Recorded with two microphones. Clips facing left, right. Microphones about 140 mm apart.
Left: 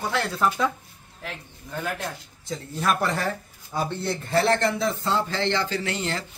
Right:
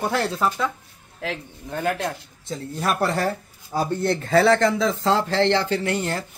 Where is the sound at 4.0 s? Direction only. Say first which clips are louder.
Right 6 dB; 75° right (ahead or behind).